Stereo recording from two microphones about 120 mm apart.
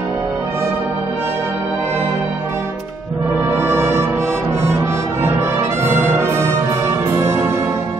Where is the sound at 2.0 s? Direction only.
20° right (ahead or behind).